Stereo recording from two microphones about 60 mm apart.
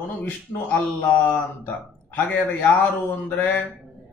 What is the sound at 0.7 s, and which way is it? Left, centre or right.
A man's voice, left.